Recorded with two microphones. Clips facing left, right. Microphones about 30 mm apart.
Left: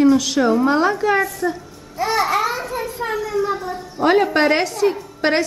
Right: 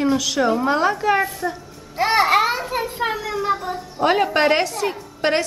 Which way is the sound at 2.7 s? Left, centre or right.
Right.